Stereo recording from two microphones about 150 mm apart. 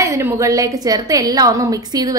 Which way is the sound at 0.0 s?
20° right (ahead or behind).